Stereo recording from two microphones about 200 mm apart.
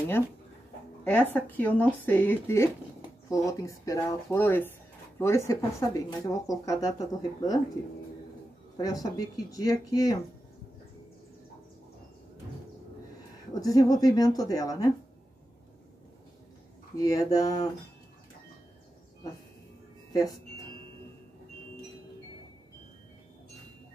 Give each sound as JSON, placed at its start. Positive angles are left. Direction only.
{"t": 1.0, "sound": "speech", "side_deg": 10}
{"t": 8.7, "sound": "speech", "side_deg": 15}
{"t": 13.6, "sound": "speech", "side_deg": 20}
{"t": 17.0, "sound": "speech", "side_deg": 20}
{"t": 20.1, "sound": "a sound", "side_deg": 20}